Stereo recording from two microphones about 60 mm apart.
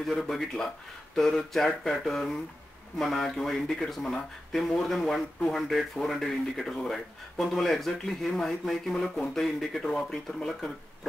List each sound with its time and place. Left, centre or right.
0.0 s speech: centre